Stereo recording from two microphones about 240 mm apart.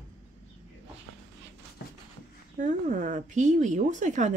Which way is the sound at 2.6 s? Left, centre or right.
Right.